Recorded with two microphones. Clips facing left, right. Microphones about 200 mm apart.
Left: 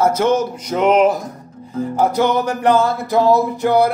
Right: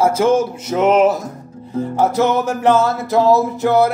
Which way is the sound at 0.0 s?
5° right (ahead or behind).